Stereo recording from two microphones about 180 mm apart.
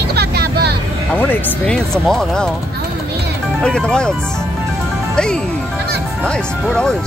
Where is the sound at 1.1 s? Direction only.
5° left (ahead or behind).